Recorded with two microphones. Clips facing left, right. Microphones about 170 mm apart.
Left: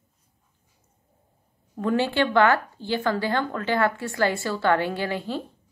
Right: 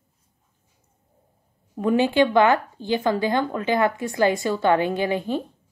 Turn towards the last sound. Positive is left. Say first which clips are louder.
# right 5 dB
turn(degrees=-15)  # may be behind; listen again after turning